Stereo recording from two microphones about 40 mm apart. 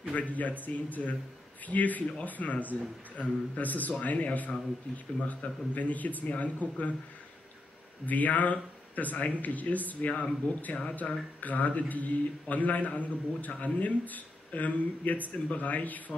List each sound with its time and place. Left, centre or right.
0.1 s a man's voice: left
8.0 s a man's voice: left